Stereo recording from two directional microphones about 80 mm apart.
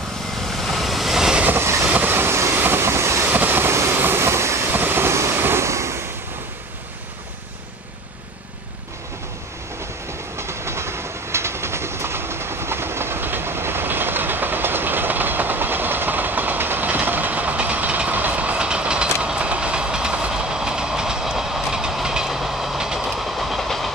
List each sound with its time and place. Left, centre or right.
0.5 s vehicle: centre
1.4 s vehicle: right
2.6 s train: right
3.3 s vehicle: right
10.3 s train: right; by 23.9 s centre